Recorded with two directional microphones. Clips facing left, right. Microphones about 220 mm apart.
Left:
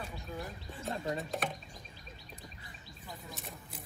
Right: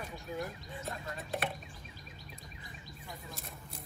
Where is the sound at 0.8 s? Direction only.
30° left (ahead or behind).